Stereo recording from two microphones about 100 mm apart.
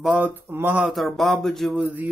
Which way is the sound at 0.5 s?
20° right (ahead or behind).